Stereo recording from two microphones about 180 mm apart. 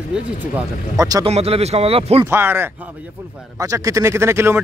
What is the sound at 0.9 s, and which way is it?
Speech, 20° right (ahead or behind).